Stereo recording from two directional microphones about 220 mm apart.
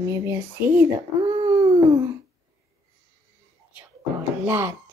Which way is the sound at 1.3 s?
20° right (ahead or behind).